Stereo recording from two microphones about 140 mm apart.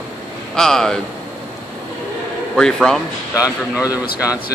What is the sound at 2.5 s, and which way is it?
Speech, 5° left (ahead or behind).